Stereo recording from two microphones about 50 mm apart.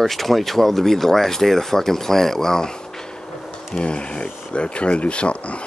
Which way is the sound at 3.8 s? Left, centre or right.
Left.